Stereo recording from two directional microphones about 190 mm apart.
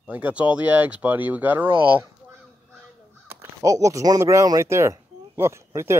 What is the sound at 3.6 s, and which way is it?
Speech, 15° right (ahead or behind).